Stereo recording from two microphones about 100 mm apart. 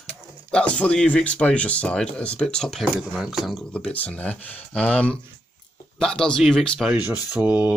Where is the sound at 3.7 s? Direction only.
15° left (ahead or behind).